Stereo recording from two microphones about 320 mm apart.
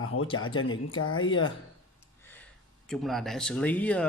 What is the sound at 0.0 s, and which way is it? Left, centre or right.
Speech, left.